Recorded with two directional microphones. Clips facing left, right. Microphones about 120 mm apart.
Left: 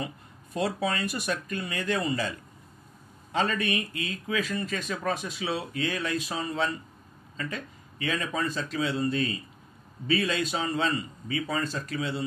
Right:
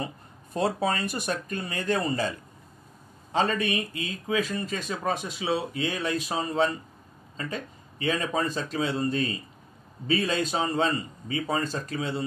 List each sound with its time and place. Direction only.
0.0 s a sound: 35° right (ahead or behind)
0.7 s speech: 40° right (ahead or behind)
3.3 s speech: 30° right (ahead or behind)